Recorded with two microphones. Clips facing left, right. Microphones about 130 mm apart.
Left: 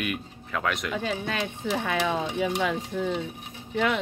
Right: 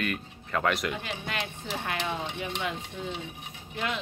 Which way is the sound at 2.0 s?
90° left.